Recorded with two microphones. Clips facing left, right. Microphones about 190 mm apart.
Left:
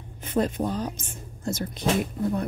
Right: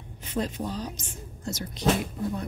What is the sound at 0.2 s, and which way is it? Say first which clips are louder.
Speech: left 5 dB; 50° left (ahead or behind).